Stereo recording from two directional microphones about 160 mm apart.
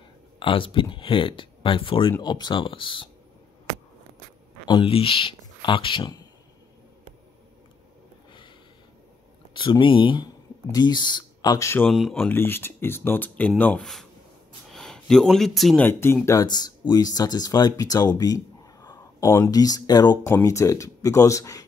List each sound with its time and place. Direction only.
0.4 s speech: 35° left (ahead or behind)
4.6 s speech: 30° left (ahead or behind)
9.5 s speech: 30° left (ahead or behind)
11.9 s speech: centre (ahead or behind)
12.3 s speech: 15° left (ahead or behind)
15.8 s speech: 15° left (ahead or behind)